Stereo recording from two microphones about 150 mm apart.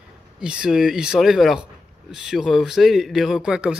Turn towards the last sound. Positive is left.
turn(degrees=-5)  # may be behind; listen again after turning